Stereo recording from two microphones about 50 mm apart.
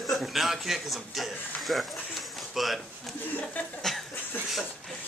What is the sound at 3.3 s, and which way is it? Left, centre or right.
Speech, left.